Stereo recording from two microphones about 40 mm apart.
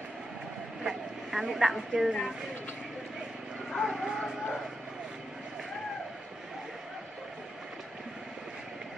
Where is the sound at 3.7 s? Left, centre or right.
Centre.